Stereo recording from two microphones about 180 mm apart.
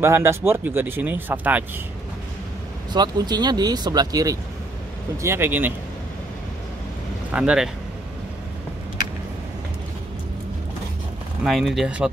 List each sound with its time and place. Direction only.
0.0 s speech: 15° right (ahead or behind)
2.9 s speech: 25° right (ahead or behind)
7.2 s speech: 5° right (ahead or behind)
11.4 s speech: centre (ahead or behind)